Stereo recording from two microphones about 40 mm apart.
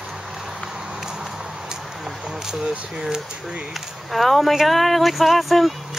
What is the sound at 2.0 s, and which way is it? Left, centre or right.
Speech, centre.